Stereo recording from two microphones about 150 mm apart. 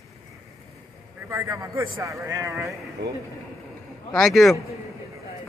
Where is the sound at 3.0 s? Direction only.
90° right.